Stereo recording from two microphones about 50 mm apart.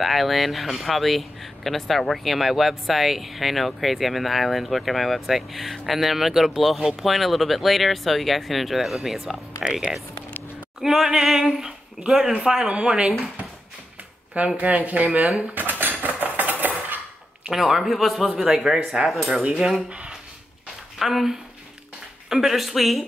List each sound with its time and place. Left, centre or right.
0.0 s speech: centre
10.8 s speech: centre
14.6 s speech: right
15.5 s dishes: right
17.5 s speech: centre
19.4 s cutlery: right
19.9 s a sound: right
21.0 s speech: centre